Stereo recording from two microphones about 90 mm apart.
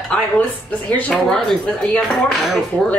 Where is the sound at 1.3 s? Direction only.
5° left (ahead or behind).